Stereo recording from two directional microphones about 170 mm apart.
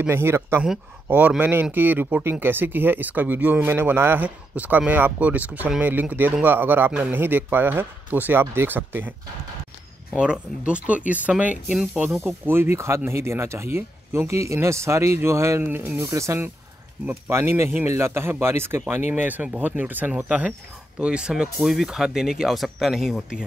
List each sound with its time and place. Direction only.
0.0 s speech: 15° right (ahead or behind)
10.1 s speech: 5° right (ahead or behind)